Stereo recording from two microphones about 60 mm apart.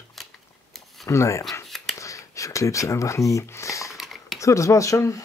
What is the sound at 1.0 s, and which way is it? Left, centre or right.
Speech, left.